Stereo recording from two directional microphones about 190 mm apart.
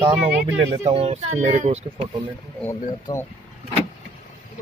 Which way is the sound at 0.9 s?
35° right (ahead or behind).